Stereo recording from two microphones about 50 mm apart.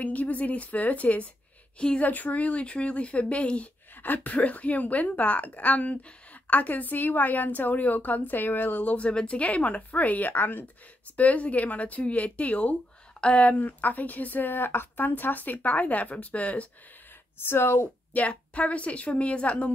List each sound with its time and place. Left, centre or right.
0.0 s a woman's voice: left
2.0 s a woman's voice: left
4.0 s a woman's voice: left
11.1 s a woman's voice: left
17.5 s speech: left
18.1 s a woman's voice: left